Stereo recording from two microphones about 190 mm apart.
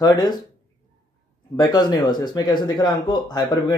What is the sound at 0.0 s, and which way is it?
Speech, 20° left (ahead or behind).